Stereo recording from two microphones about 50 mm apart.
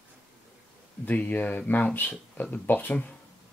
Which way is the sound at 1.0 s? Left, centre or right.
Left.